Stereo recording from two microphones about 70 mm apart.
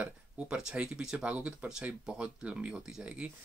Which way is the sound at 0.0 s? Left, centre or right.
Centre.